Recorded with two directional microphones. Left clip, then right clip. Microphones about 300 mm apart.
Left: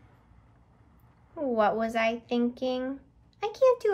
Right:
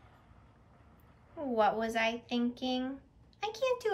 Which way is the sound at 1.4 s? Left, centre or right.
Centre.